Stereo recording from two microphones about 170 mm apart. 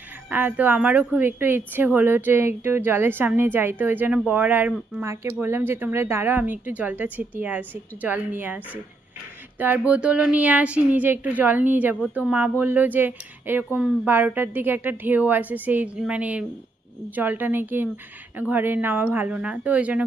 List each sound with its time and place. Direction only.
0.3 s a woman's voice: 10° right (ahead or behind)